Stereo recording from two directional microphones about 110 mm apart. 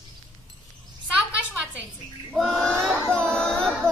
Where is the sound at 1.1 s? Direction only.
10° right (ahead or behind).